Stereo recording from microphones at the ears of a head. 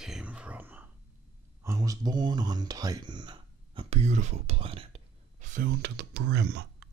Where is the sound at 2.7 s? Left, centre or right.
Right.